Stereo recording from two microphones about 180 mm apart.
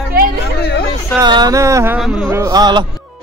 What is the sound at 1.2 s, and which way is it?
Speech, 20° right (ahead or behind).